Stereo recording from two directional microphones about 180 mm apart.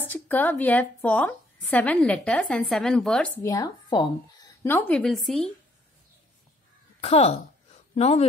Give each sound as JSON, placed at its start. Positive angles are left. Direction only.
{"t": 0.0, "sound": "a woman's voice", "side_deg": 10}
{"t": 3.4, "sound": "speech", "side_deg": 20}
{"t": 7.0, "sound": "a sound", "side_deg": 35}